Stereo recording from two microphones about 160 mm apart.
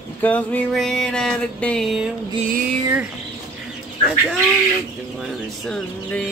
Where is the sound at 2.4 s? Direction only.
60° right (ahead or behind).